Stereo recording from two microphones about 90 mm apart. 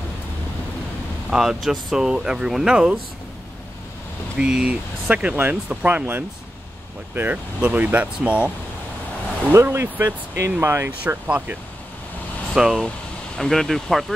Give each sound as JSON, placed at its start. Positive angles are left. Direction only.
{"t": 1.3, "sound": "speech", "side_deg": -5}
{"t": 4.4, "sound": "speech", "side_deg": -10}
{"t": 9.5, "sound": "speech", "side_deg": -30}
{"t": 11.2, "sound": "speech", "side_deg": -15}
{"t": 12.5, "sound": "speech", "side_deg": -5}